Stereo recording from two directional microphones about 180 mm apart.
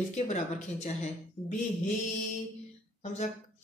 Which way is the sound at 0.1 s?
40° left (ahead or behind).